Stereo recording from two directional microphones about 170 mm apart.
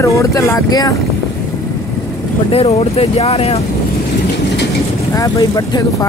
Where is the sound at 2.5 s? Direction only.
40° left (ahead or behind).